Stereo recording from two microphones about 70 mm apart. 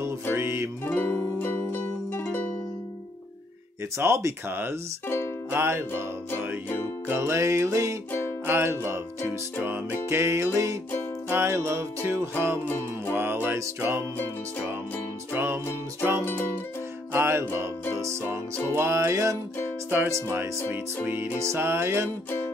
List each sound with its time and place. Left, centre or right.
0.0 s music: right
0.8 s music: left
4.0 s music: right
7.2 s music: right
11.2 s music: right
12.6 s music: left
13.1 s music: right
15.3 s music: right